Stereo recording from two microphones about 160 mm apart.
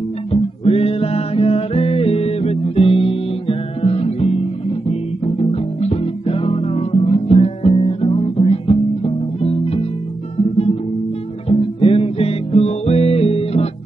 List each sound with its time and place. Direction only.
0.3 s music: 40° left (ahead or behind)
11.4 s music: 35° left (ahead or behind)